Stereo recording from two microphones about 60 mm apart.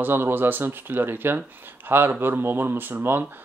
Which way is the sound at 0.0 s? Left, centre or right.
Right.